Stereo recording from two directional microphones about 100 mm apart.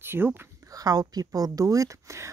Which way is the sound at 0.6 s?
35° right (ahead or behind).